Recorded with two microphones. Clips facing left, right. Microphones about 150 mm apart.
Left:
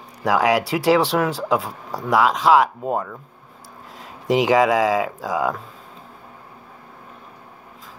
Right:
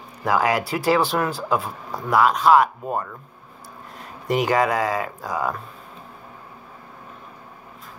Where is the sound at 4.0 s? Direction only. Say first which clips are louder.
Left 3 dB; 90° left.